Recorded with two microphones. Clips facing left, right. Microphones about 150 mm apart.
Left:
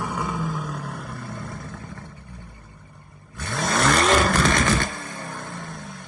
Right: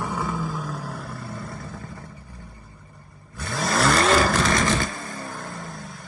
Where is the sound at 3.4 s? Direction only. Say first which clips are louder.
Even; centre (ahead or behind).